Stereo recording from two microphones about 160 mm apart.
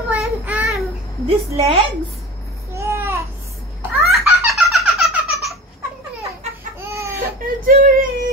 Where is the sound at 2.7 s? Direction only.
15° right (ahead or behind).